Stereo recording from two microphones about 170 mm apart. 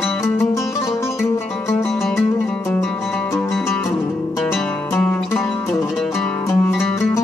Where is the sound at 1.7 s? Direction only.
Centre (ahead or behind).